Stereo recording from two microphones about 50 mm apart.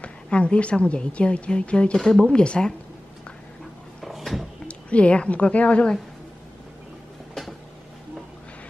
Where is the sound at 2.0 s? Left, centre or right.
Centre.